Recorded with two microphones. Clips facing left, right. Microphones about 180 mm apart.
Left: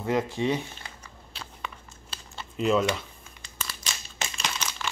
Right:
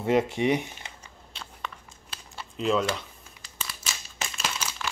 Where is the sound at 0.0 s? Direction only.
20° right (ahead or behind).